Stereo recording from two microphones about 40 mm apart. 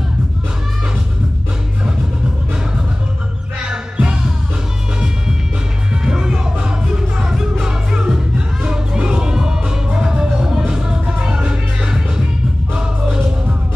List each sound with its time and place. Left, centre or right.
3.6 s music: right
6.0 s music: centre